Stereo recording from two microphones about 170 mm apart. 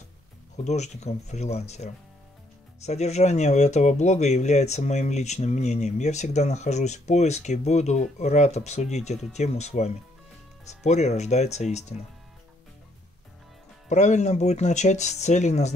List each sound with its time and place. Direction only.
0.7 s speech: 45° left (ahead or behind)
13.8 s speech: 45° left (ahead or behind)